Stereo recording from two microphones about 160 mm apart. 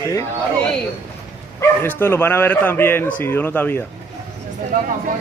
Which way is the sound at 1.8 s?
15° left (ahead or behind).